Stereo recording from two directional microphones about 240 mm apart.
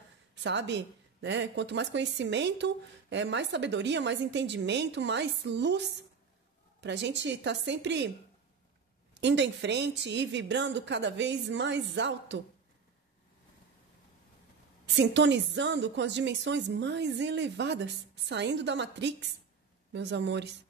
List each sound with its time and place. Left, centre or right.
0.4 s speech: right
9.2 s speech: right
15.0 s speech: right